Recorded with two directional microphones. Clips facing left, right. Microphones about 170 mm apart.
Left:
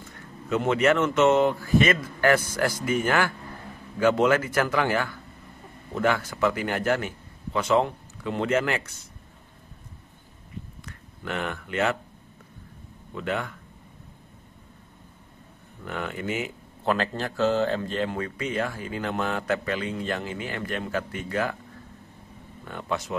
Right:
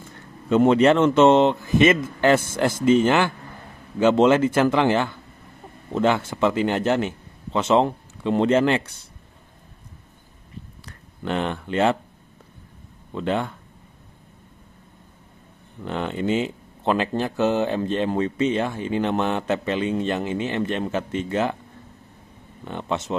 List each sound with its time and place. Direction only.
0.5 s speech: 30° right (ahead or behind)
10.9 s speech: 30° right (ahead or behind)
13.1 s speech: 30° right (ahead or behind)
15.8 s speech: 25° right (ahead or behind)
22.7 s speech: 25° right (ahead or behind)